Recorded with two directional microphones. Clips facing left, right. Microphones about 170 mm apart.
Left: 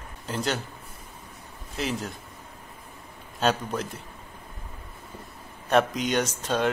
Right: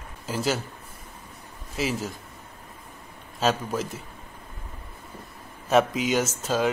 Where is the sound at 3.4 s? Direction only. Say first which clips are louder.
Right 1 dB; centre (ahead or behind).